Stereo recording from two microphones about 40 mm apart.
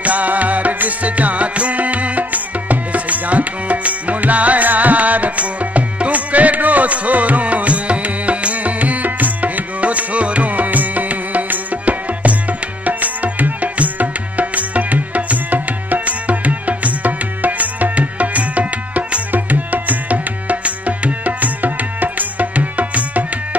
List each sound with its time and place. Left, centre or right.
0.0 s music: right